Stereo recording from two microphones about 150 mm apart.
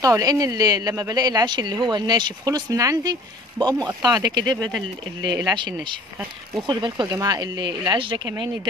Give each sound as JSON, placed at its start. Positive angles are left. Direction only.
{"t": 0.0, "sound": "a woman's voice", "side_deg": -25}